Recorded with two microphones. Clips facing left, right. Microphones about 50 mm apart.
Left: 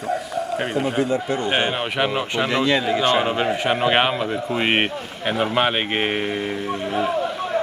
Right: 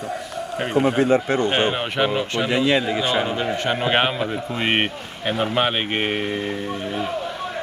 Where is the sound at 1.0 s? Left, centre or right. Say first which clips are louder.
Right 4 dB; right.